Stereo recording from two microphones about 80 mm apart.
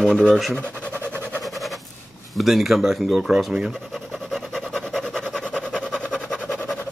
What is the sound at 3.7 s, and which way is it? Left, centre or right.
Vehicle, centre.